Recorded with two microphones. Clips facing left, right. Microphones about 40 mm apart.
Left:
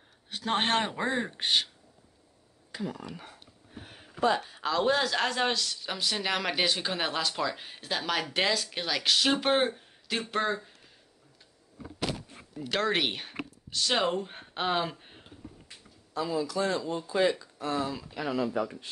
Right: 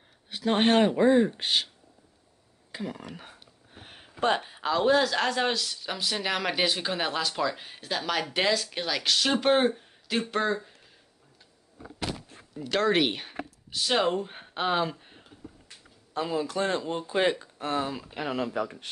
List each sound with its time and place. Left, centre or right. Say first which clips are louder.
0.3 s speech: right 4 dB; centre
2.7 s speech: even; right
4.4 s speech: right 2 dB; centre
12.6 s speech: right 4 dB; centre
15.0 s a sound: even; centre
16.1 s speech: right 1 dB; right
18.5 s speech: even; right